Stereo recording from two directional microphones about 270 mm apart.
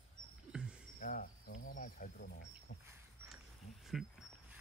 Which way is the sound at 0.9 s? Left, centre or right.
Left.